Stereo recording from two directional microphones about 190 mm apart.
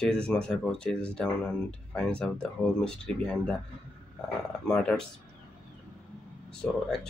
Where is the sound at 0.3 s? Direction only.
5° left (ahead or behind).